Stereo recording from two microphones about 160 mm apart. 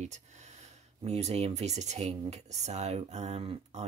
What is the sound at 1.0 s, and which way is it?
Speech, 40° right (ahead or behind).